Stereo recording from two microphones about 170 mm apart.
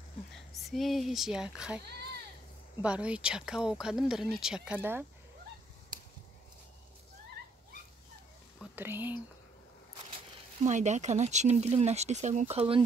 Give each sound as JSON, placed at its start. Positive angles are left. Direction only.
{"t": 0.3, "sound": "speech", "side_deg": 0}
{"t": 2.8, "sound": "speech", "side_deg": -5}
{"t": 8.7, "sound": "speech", "side_deg": -10}
{"t": 10.1, "sound": "speech", "side_deg": -40}